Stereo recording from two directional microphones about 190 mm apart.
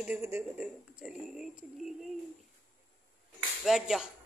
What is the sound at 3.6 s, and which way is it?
Speech, centre (ahead or behind).